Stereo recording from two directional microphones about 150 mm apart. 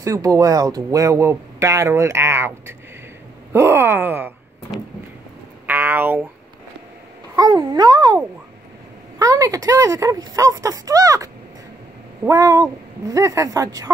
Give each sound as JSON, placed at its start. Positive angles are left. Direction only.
{"t": 0.0, "sound": "speech", "side_deg": -20}
{"t": 3.5, "sound": "groan", "side_deg": -15}
{"t": 5.7, "sound": "speech", "side_deg": -10}
{"t": 7.3, "sound": "speech", "side_deg": -25}
{"t": 9.2, "sound": "speech", "side_deg": -25}
{"t": 12.3, "sound": "speech", "side_deg": -20}